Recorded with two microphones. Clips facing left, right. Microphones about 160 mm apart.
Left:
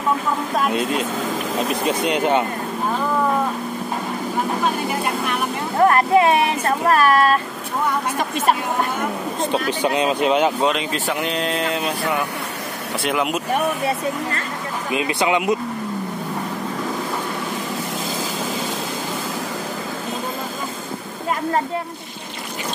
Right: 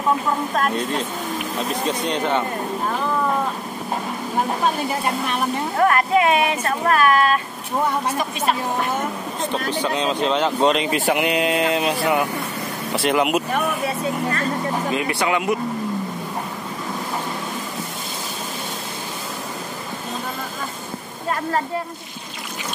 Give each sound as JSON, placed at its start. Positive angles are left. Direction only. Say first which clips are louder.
{"t": 0.6, "sound": "speech", "louder": "left 3 dB", "side_deg": 10}
{"t": 2.0, "sound": "speech", "louder": "left 4 dB", "side_deg": 10}
{"t": 5.9, "sound": "speech", "louder": "left 3 dB", "side_deg": 30}
{"t": 9.5, "sound": "speech", "louder": "left 2 dB", "side_deg": 10}
{"t": 11.1, "sound": "a sound", "louder": "right 3 dB", "side_deg": -5}
{"t": 14.9, "sound": "speech", "louder": "left 4 dB", "side_deg": 20}